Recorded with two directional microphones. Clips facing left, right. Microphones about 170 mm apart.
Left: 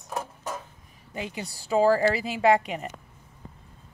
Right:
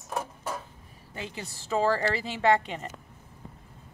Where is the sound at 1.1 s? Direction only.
15° left (ahead or behind).